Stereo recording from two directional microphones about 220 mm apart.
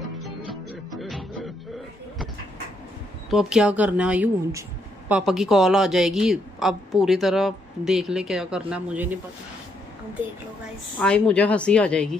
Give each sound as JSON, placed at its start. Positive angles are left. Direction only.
{"t": 0.9, "sound": "music", "side_deg": 0}
{"t": 3.3, "sound": "speech", "side_deg": 0}
{"t": 11.0, "sound": "speech", "side_deg": 5}